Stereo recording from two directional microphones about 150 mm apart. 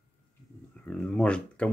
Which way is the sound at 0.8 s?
10° left (ahead or behind).